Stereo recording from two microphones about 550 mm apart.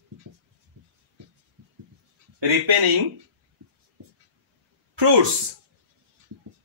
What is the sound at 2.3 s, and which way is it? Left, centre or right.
Speech, right.